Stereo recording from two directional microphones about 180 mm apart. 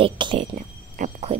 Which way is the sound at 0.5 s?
40° right (ahead or behind).